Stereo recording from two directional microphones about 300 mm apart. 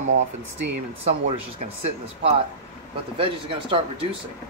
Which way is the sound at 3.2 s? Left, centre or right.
Centre.